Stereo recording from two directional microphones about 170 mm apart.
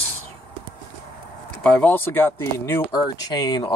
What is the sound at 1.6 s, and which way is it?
Speech, 10° left (ahead or behind).